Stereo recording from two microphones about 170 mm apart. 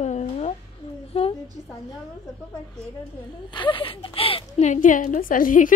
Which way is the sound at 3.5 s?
30° left (ahead or behind).